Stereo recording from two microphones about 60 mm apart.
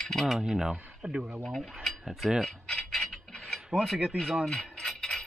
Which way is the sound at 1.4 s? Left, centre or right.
Centre.